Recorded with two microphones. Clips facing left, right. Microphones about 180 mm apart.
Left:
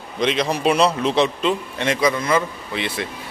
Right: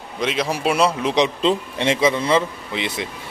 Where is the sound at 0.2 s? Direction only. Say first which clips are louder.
Left 2 dB; 5° right (ahead or behind).